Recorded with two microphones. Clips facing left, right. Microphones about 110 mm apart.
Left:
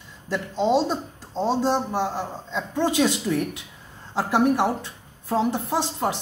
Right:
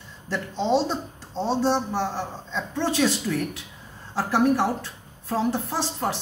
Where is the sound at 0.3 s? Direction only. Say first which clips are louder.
Left 2 dB; 10° left (ahead or behind).